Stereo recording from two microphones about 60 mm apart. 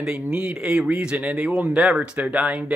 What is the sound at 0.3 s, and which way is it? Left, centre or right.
Speech, centre.